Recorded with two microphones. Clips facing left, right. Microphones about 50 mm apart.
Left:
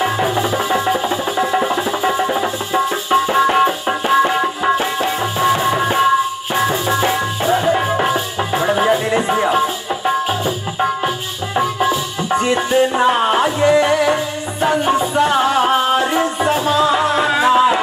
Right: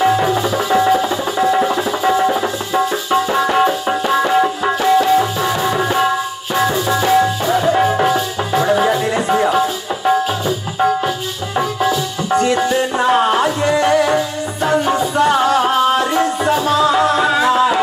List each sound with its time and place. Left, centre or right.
2.7 s music: left
8.0 s music: left
11.9 s music: left
16.9 s music: left